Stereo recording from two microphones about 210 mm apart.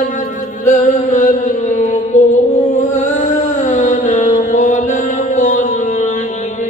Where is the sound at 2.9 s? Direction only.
35° left (ahead or behind).